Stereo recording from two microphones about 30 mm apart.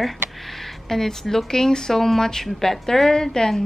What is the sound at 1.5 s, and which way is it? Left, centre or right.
A woman's voice, centre.